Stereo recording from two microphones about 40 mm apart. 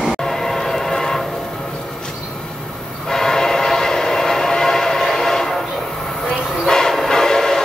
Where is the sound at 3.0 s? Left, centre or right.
Centre.